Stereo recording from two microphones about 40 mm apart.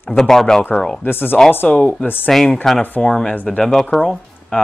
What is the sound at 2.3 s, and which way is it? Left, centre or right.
Speech, centre.